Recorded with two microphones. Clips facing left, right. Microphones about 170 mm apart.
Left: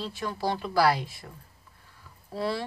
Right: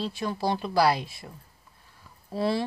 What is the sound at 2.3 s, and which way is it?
Speech, 20° right (ahead or behind).